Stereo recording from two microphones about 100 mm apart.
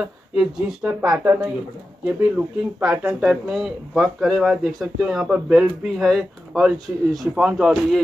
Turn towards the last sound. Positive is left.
turn(degrees=-5)  # may be behind; listen again after turning